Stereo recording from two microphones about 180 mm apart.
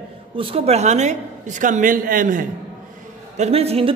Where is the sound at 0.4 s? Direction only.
30° right (ahead or behind); by 2.4 s 50° right (ahead or behind).